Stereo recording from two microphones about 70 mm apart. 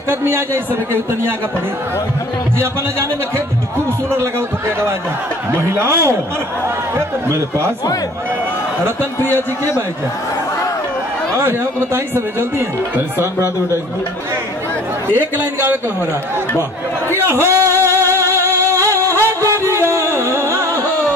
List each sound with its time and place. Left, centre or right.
0.1 s speech: right
4.1 s speech: right
11.3 s speech: right
15.3 s speech: right
17.5 s music: right